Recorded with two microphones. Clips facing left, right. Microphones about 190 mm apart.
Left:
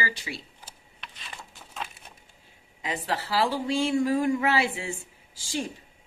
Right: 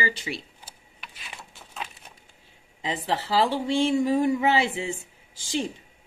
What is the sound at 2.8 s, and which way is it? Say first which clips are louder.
Speech: right 2 dB; 20° right (ahead or behind).